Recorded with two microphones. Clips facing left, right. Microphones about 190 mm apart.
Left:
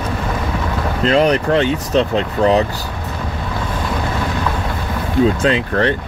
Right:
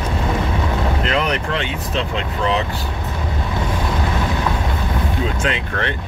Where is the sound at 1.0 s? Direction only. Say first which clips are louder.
Left 7 dB; 35° left (ahead or behind).